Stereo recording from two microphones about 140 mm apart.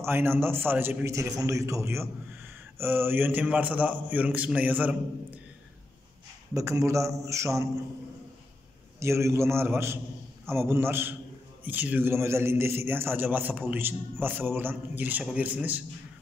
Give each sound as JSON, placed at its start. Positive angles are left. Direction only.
{"t": 0.0, "sound": "a man's voice", "side_deg": -15}
{"t": 6.5, "sound": "a man's voice", "side_deg": -20}
{"t": 9.0, "sound": "a man's voice", "side_deg": -20}